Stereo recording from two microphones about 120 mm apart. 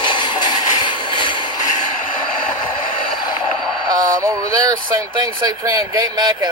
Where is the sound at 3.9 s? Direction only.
30° right (ahead or behind).